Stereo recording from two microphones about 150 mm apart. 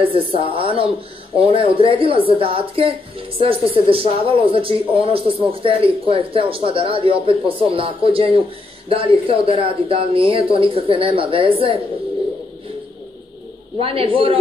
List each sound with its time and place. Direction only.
0.0 s speech: 35° right (ahead or behind)
13.7 s speech: 40° right (ahead or behind)